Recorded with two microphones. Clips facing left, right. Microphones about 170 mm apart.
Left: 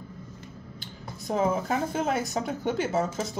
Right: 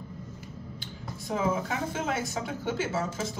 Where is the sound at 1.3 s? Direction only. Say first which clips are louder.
Left 3 dB; 45° left (ahead or behind).